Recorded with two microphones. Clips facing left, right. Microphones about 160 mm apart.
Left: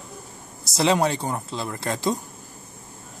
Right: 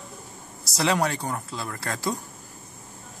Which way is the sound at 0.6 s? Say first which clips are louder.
Left 3 dB; 20° left (ahead or behind).